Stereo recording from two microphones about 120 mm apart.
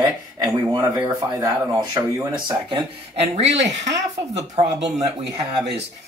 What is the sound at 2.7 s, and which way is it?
Speech, 60° right (ahead or behind).